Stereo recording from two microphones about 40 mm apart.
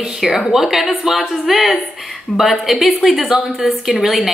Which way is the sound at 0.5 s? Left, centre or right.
Centre.